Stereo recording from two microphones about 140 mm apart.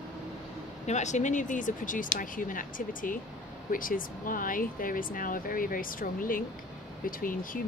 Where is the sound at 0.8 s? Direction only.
55° left (ahead or behind).